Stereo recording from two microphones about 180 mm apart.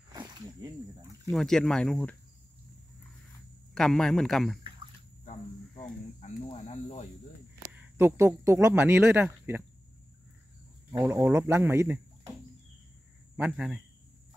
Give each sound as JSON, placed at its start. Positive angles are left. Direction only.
{"t": 0.1, "sound": "snake", "side_deg": -25}
{"t": 1.3, "sound": "speech", "side_deg": 5}
{"t": 3.7, "sound": "speech", "side_deg": 5}
{"t": 6.2, "sound": "cricket", "side_deg": 35}
{"t": 7.7, "sound": "speech", "side_deg": -15}
{"t": 10.9, "sound": "speech", "side_deg": -15}
{"t": 13.4, "sound": "speech", "side_deg": -5}